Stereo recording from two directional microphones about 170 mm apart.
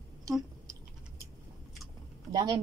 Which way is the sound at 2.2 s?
20° right (ahead or behind).